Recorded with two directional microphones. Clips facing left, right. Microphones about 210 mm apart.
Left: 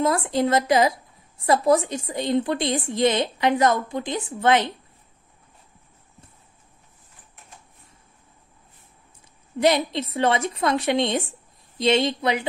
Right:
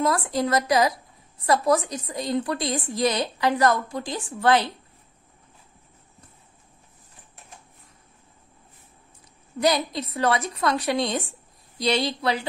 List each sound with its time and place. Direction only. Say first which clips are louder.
0.0 s a woman's voice: left 2 dB; 25° left (ahead or behind)
9.6 s a woman's voice: left 3 dB; 25° left (ahead or behind)